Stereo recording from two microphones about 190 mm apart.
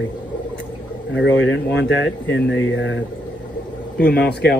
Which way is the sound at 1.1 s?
90° left.